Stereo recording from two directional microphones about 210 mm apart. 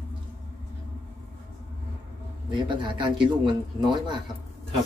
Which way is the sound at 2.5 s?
20° right (ahead or behind).